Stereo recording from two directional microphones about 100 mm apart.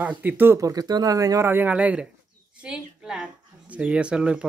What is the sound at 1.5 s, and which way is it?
A woman's voice, 15° right (ahead or behind).